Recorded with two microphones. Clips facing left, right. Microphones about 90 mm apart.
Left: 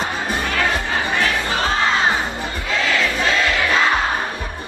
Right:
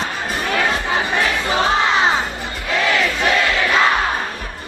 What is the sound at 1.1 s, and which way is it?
Crowd, 20° right (ahead or behind).